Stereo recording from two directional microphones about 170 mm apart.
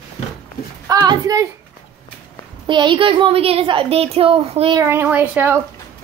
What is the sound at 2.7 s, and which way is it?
A woman's voice, 30° right (ahead or behind).